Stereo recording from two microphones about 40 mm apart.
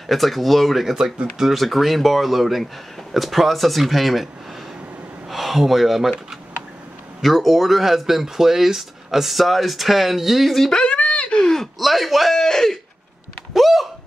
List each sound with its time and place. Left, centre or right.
0.0 s speech: centre
5.3 s speech: centre
7.2 s speech: centre
10.9 s speech: left
11.8 s speech: centre
12.4 s speech: centre
13.5 s speech: centre